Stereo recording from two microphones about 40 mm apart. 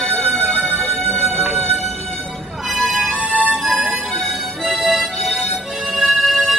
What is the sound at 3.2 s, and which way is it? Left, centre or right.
Music, right.